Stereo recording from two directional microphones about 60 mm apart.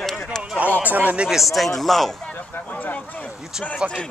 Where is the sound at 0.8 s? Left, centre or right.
Right.